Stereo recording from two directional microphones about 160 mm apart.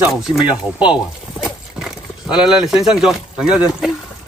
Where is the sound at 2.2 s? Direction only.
5° right (ahead or behind).